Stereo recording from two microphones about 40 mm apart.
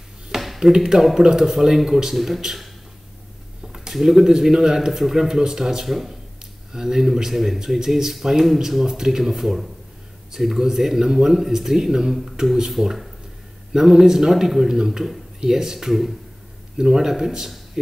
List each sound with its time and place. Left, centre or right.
0.6 s speech: centre
3.6 s a sound: centre
3.9 s speech: centre